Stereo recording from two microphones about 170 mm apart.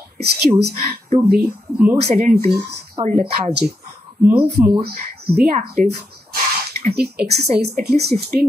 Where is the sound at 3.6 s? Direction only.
55° right (ahead or behind).